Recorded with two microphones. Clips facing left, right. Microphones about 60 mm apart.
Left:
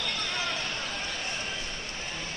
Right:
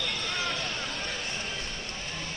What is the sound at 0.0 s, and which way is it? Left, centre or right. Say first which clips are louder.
Basketball bounce: even; centre.